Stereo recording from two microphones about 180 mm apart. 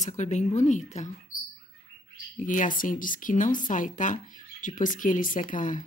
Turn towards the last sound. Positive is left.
turn(degrees=45)  # may be behind; listen again after turning